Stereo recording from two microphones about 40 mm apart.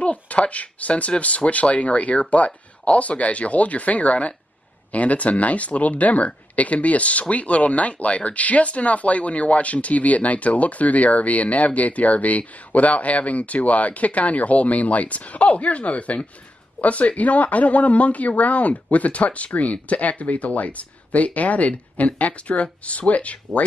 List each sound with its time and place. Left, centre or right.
0.0 s speech: left